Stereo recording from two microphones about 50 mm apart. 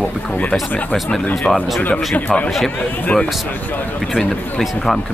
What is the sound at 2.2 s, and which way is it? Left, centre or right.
Speech, left.